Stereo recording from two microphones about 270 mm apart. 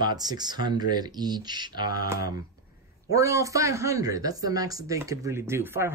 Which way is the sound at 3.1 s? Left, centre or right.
Centre.